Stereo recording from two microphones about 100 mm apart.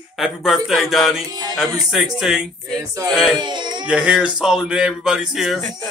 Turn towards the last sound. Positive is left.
turn(degrees=-5)  # may be behind; listen again after turning